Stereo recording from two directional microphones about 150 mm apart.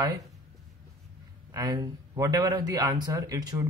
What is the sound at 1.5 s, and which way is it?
A man's voice, 25° right (ahead or behind).